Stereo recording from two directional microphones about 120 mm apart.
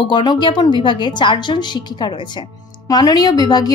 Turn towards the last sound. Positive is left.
turn(degrees=35)  # may be behind; listen again after turning